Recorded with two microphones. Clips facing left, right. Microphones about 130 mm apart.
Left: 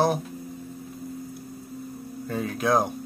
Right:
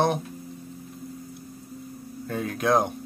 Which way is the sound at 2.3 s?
Centre (ahead or behind).